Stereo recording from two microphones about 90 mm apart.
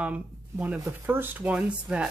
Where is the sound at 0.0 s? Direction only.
15° right (ahead or behind).